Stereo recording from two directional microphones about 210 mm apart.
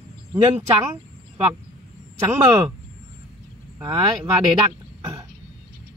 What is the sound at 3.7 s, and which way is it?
Speech, 15° right (ahead or behind).